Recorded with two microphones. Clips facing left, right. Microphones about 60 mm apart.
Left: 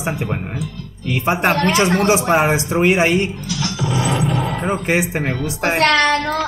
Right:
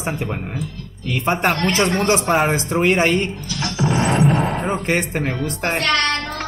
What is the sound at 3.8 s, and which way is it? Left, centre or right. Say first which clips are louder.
Music: right 3 dB; right.